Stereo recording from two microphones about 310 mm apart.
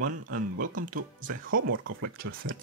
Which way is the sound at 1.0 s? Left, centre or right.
Right.